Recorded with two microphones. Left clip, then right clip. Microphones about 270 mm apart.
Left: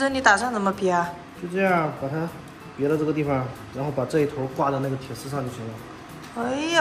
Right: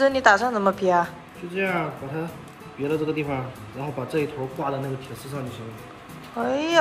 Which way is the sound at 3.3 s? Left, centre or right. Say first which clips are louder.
Left 3 dB; centre.